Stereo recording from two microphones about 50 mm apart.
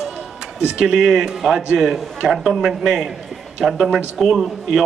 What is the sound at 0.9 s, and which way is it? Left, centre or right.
Speech, centre.